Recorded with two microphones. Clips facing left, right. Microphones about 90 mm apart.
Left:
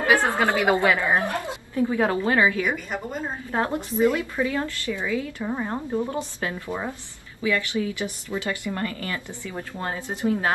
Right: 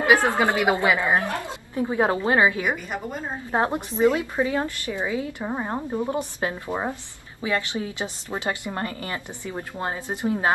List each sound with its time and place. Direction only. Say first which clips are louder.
0.0 s a woman's voice: right 1 dB; 20° right (ahead or behind)
1.1 s speech: even; 20° left (ahead or behind)
1.8 s a woman's voice: even; 25° right (ahead or behind)